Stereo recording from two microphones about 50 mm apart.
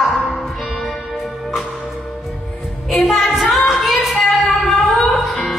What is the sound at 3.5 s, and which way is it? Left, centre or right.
Singing, centre.